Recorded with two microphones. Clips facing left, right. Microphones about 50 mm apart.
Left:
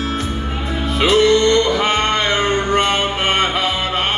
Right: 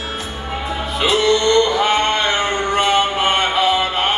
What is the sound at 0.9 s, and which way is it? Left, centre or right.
Music, left.